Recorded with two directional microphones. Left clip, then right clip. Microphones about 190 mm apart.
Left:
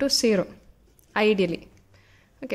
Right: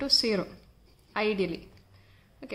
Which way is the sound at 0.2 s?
30° left (ahead or behind).